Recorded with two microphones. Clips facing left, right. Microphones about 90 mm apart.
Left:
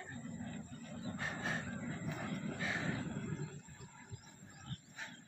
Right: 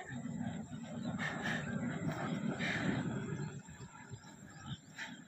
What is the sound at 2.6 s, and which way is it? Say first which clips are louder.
Vehicle: right 2 dB; 20° left (ahead or behind).